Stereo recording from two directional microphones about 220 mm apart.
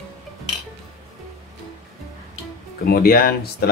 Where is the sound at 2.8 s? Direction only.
45° left (ahead or behind).